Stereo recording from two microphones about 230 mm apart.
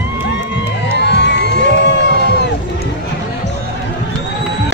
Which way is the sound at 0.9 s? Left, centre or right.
Left.